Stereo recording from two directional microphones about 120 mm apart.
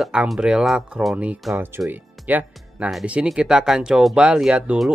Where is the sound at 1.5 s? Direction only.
20° right (ahead or behind).